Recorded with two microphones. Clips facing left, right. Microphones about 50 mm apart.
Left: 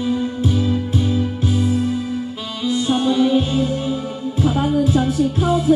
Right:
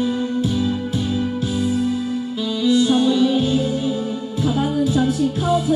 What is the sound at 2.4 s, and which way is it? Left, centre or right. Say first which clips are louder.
Music: right 6 dB; left.